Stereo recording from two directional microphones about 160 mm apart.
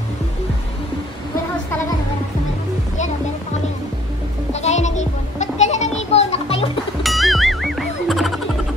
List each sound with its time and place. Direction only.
4.5 s music: 45° left (ahead or behind)
7.0 s music: centre (ahead or behind)